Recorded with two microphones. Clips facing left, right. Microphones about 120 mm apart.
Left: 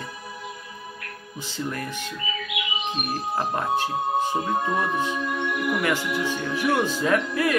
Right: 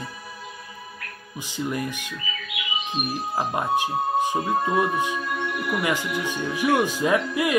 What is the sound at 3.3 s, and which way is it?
Speech, 15° right (ahead or behind).